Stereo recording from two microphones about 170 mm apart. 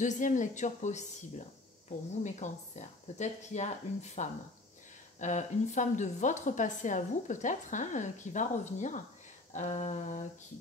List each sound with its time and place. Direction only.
0.0 s a woman's voice: 45° left (ahead or behind)
2.2 s a woman's voice: 45° left (ahead or behind)